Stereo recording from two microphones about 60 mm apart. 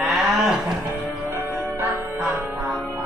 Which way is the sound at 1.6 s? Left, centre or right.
Right.